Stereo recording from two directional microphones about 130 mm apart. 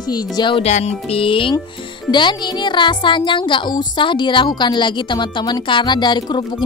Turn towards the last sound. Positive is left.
turn(degrees=35)  # may be behind; listen again after turning